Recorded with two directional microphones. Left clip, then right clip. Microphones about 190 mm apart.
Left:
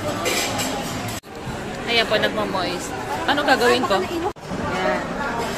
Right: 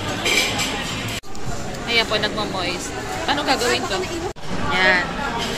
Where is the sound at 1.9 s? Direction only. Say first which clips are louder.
Left 1 dB; 5° left (ahead or behind).